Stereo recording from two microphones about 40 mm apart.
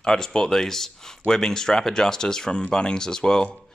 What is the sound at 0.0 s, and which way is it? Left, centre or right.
Speech, centre.